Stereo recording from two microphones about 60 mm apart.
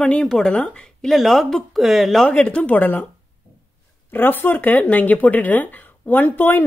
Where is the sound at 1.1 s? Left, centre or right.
Centre.